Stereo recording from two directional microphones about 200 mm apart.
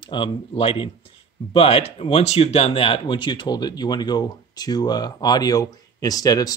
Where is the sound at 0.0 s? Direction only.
25° left (ahead or behind).